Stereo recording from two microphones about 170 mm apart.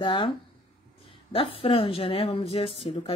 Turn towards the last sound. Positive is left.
turn(degrees=35)  # may be behind; listen again after turning